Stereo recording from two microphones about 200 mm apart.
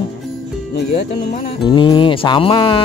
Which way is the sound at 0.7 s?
50° left (ahead or behind).